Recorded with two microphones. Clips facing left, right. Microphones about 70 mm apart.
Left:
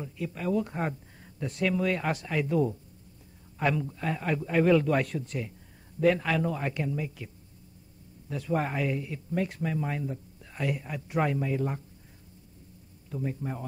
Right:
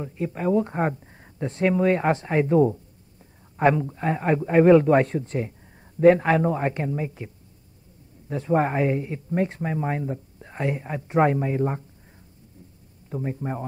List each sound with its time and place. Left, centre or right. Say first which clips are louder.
0.0 s speech: right 7 dB; right
8.3 s speech: right 7 dB; right
13.1 s speech: right 5 dB; right